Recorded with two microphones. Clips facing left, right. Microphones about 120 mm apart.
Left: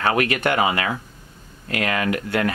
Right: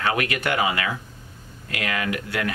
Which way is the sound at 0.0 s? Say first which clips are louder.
Left 4 dB; 40° left (ahead or behind).